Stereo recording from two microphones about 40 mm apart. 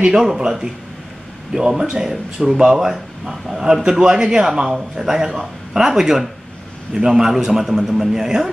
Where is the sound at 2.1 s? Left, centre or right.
Centre.